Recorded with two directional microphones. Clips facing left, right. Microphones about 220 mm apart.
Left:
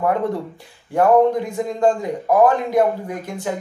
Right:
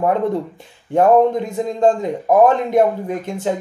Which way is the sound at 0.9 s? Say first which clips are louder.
Right 2 dB; 25° right (ahead or behind).